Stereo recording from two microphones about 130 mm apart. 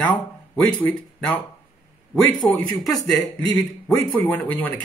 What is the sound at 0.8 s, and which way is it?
Speech, 10° left (ahead or behind).